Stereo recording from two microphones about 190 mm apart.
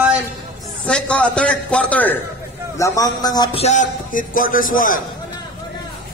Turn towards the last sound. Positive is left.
turn(degrees=45)  # may be behind; listen again after turning